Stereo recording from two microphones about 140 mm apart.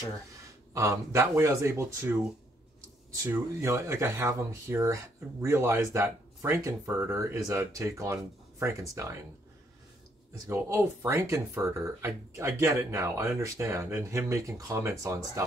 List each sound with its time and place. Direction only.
0.7 s speech: 20° right (ahead or behind)
10.3 s speech: 20° right (ahead or behind)